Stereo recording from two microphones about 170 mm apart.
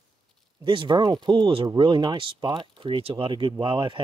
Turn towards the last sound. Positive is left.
turn(degrees=-30)  # may be behind; listen again after turning